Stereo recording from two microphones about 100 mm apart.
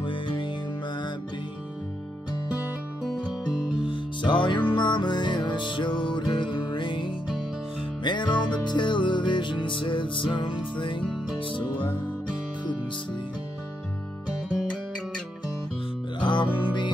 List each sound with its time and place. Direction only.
0.0 s music: 55° left (ahead or behind)
3.0 s music: 5° right (ahead or behind)
3.8 s music: 55° left (ahead or behind)
14.6 s guitar: 10° left (ahead or behind)
16.2 s music: 50° left (ahead or behind)